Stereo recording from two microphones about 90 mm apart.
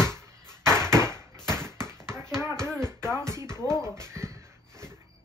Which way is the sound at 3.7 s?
30° right (ahead or behind).